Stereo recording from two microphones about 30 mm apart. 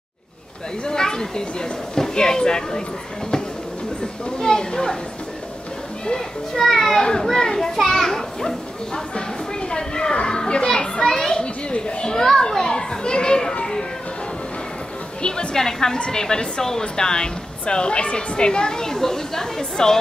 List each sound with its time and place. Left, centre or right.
0.8 s speech: left
4.4 s a child's voice: left
6.1 s a child's voice: centre
9.1 s a child's voice: left
10.7 s a child's voice: centre
11.4 s a child's voice: left
15.2 s a woman's voice: left
15.5 s a child's voice: centre